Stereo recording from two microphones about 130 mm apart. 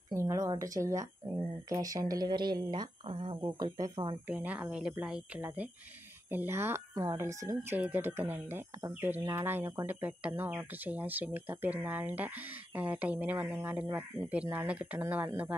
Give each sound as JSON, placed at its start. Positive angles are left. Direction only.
{"t": 0.1, "sound": "a woman's voice", "side_deg": -25}
{"t": 1.2, "sound": "speech", "side_deg": -35}
{"t": 3.5, "sound": "speech", "side_deg": -30}
{"t": 4.3, "sound": "speech", "side_deg": -10}